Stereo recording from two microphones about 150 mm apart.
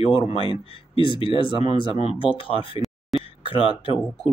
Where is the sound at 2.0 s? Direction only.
40° left (ahead or behind).